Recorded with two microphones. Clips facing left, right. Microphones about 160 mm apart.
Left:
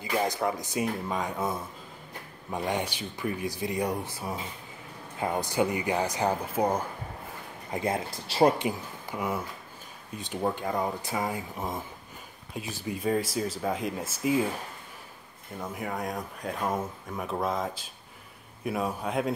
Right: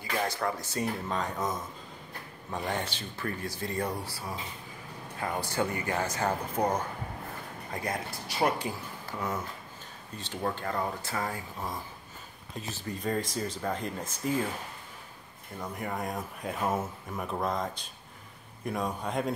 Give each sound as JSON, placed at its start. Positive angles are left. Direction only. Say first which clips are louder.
{"t": 0.0, "sound": "speech", "louder": "left 3 dB", "side_deg": 15}
{"t": 7.7, "sound": "speech", "louder": "left 5 dB", "side_deg": 25}
{"t": 8.6, "sound": "speech", "louder": "left 5 dB", "side_deg": 15}
{"t": 15.6, "sound": "speech", "louder": "left 1 dB", "side_deg": 0}